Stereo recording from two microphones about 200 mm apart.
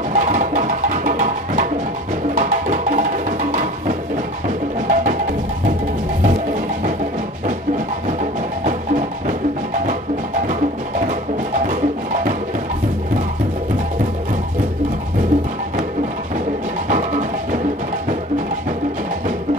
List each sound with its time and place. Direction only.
0.1 s music: 40° right (ahead or behind)